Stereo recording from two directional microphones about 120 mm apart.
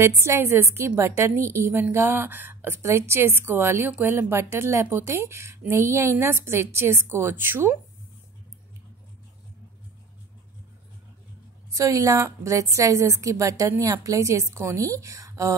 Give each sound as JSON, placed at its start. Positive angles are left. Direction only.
{"t": 0.0, "sound": "a woman's voice", "side_deg": -20}
{"t": 11.7, "sound": "a woman's voice", "side_deg": -25}